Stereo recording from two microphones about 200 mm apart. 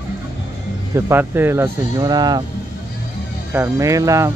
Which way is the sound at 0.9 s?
10° right (ahead or behind).